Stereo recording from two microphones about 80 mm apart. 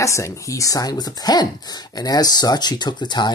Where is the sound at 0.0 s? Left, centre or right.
Left.